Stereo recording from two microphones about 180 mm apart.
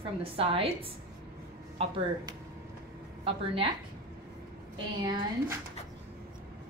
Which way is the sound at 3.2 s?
30° right (ahead or behind).